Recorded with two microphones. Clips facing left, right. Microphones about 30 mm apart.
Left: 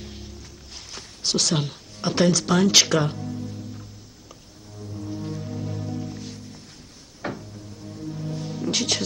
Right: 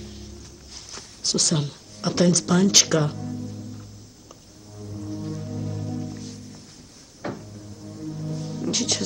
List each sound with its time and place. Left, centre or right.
0.0 s music: centre
0.7 s speech: centre
3.3 s music: centre
4.9 s music: centre